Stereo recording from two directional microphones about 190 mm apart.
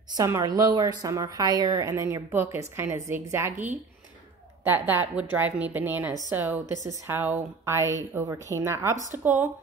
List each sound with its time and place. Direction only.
0.1 s a woman's voice: 20° right (ahead or behind)
4.6 s a woman's voice: 10° right (ahead or behind)